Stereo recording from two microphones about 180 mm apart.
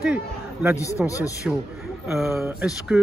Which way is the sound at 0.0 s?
5° right (ahead or behind).